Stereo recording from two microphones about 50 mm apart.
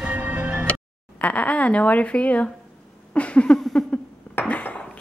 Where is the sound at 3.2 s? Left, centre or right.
Left.